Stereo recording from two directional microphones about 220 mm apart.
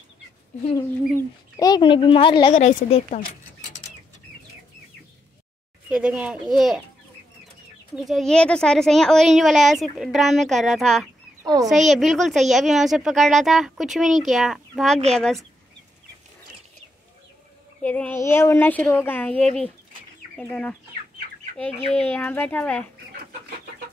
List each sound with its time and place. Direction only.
0.7 s speech: 15° left (ahead or behind)
2.6 s speech: 30° left (ahead or behind)
5.9 s speech: 5° right (ahead or behind)
7.9 s speech: centre (ahead or behind)
11.4 s a child's voice: 15° right (ahead or behind)
11.7 s speech: centre (ahead or behind)
17.8 s a woman's voice: 5° left (ahead or behind)
21.7 s speech: 25° right (ahead or behind)
22.1 s a woman's voice: 5° left (ahead or behind)